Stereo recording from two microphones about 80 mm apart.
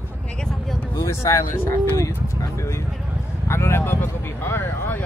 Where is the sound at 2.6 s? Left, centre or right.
Left.